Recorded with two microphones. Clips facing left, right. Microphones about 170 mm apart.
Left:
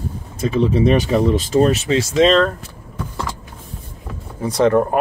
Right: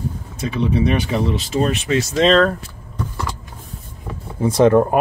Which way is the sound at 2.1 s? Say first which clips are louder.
Left 1 dB; centre (ahead or behind).